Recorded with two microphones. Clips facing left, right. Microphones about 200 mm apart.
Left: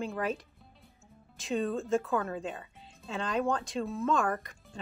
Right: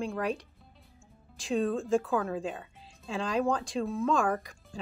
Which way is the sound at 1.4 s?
Centre (ahead or behind).